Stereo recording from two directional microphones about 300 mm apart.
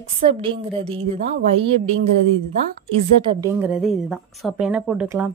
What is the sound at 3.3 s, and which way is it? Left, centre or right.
A woman's voice, centre.